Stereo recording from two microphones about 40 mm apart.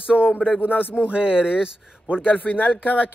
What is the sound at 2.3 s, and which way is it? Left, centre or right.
Speech, left.